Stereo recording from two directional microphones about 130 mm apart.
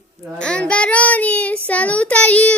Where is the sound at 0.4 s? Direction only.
5° left (ahead or behind).